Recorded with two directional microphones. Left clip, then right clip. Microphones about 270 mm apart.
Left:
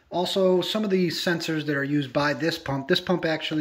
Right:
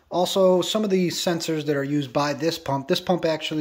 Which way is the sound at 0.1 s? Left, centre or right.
Centre.